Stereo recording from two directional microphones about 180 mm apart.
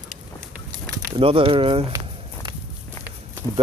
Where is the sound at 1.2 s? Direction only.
30° right (ahead or behind).